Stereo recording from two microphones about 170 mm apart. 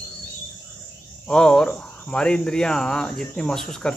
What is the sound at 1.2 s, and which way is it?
Speech, 5° left (ahead or behind).